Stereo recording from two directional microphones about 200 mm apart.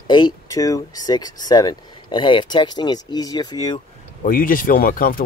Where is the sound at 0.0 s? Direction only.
20° left (ahead or behind).